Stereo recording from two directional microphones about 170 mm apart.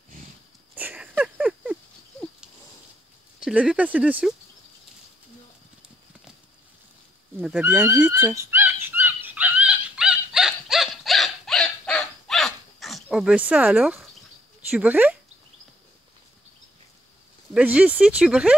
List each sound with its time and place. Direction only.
0.7 s a sound: 10° right (ahead or behind)
3.3 s speech: 5° right (ahead or behind)
7.3 s dog: 5° right (ahead or behind)
14.7 s speech: 10° right (ahead or behind)
17.6 s speech: 10° right (ahead or behind)